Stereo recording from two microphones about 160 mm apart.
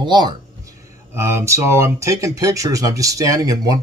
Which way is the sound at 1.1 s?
15° right (ahead or behind).